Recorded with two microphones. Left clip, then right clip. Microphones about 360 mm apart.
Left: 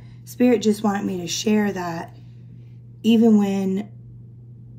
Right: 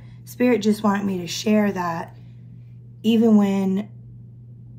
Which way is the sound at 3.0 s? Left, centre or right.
Centre.